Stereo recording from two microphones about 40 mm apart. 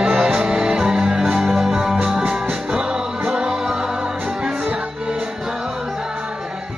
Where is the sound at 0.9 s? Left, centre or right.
Right.